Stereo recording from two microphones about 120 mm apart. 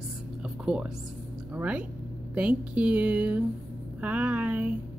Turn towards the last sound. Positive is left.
turn(degrees=-15)  # may be behind; listen again after turning